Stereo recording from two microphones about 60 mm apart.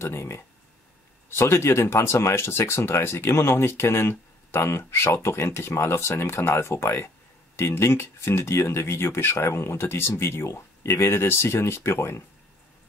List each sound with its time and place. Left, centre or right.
0.0 s speech: left